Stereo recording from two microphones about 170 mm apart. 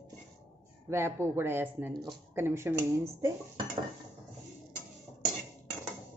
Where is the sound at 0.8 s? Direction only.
15° right (ahead or behind).